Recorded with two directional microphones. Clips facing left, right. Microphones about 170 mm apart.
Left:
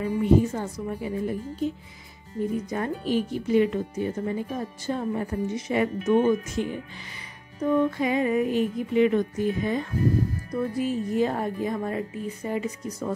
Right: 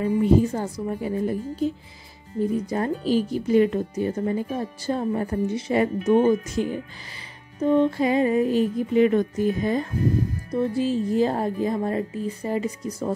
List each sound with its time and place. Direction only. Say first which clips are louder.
0.0 s speech: right 2 dB; 35° right (ahead or behind)
2.7 s speech: right 3 dB; 35° right (ahead or behind)
10.5 s speech: right 4 dB; 25° right (ahead or behind)